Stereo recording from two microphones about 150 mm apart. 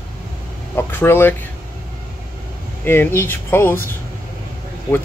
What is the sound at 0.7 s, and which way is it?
Speech, 15° left (ahead or behind).